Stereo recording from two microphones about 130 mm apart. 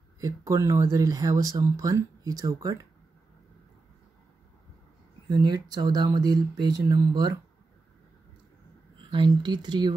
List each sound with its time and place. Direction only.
0.2 s speech: 25° right (ahead or behind)
5.3 s speech: 30° right (ahead or behind)
8.9 s speech: 40° right (ahead or behind)